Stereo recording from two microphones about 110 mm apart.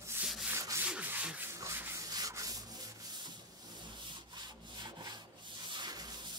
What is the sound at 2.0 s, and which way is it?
Rub, 35° right (ahead or behind).